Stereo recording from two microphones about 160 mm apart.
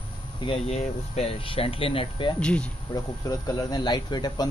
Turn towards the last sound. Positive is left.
turn(degrees=25)  # may be behind; listen again after turning